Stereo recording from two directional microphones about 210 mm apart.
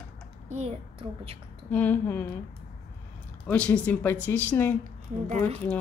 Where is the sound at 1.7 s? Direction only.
10° left (ahead or behind).